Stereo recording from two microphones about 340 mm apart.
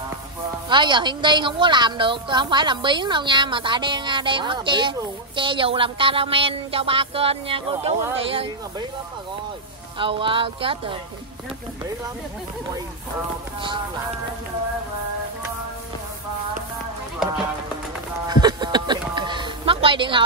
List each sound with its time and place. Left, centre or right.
0.7 s a woman's voice: centre
9.9 s a woman's voice: centre
18.2 s a sound: centre